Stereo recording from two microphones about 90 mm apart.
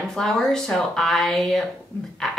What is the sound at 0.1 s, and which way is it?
A woman's voice, 5° left (ahead or behind).